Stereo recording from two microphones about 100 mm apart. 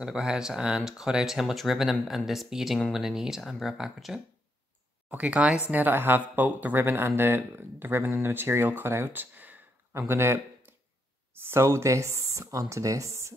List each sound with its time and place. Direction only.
0.0 s speech: 5° right (ahead or behind); by 13.3 s 30° right (ahead or behind)